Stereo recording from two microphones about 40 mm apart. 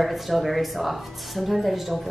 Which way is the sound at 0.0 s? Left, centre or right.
Centre.